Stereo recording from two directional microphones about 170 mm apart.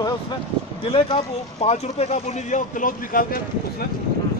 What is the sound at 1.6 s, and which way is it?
Speech, 40° left (ahead or behind).